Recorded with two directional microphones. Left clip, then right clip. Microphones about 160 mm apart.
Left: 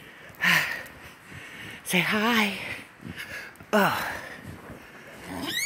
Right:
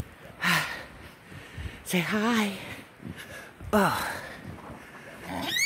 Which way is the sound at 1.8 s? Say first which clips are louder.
Left 4 dB; 15° right (ahead or behind).